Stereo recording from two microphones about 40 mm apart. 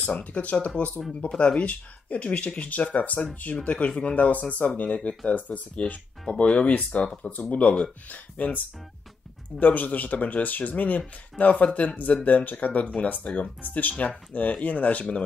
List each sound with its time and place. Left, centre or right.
0.1 s speech: left
9.6 s speech: left